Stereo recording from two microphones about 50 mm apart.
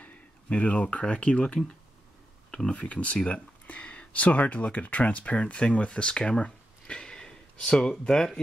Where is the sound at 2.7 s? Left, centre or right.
Left.